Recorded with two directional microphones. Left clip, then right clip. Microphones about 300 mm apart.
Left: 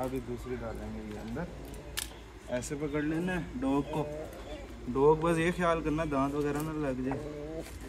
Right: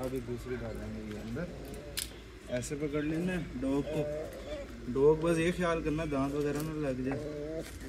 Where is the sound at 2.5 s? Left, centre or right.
Centre.